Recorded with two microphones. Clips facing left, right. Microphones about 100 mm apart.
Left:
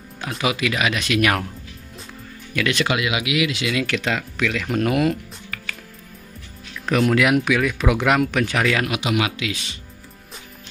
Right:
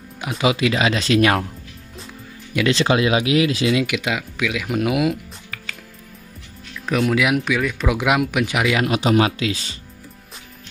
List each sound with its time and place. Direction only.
0.4 s speech: 25° right (ahead or behind)
2.5 s speech: 30° right (ahead or behind)
3.8 s speech: 10° right (ahead or behind)
6.9 s speech: centre (ahead or behind)
8.8 s speech: 35° right (ahead or behind)